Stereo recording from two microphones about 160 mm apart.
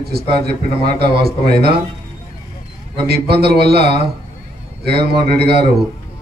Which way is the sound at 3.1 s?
85° right.